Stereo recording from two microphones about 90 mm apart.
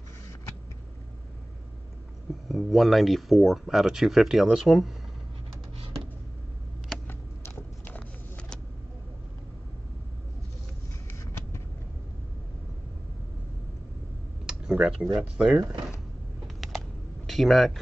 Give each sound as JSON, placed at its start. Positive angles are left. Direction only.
{"t": 2.4, "sound": "speech", "side_deg": 0}
{"t": 7.1, "sound": "a sound", "side_deg": 25}
{"t": 14.4, "sound": "computer keyboard", "side_deg": -10}
{"t": 15.3, "sound": "speech", "side_deg": -10}
{"t": 16.6, "sound": "a sound", "side_deg": -5}
{"t": 17.3, "sound": "speech", "side_deg": 0}